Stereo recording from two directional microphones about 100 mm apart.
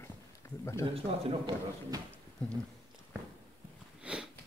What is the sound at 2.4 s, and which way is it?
Speech, 10° left (ahead or behind).